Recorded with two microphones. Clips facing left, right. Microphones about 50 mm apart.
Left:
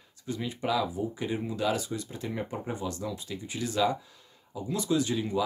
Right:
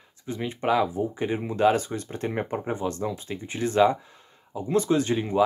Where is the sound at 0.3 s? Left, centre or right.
Right.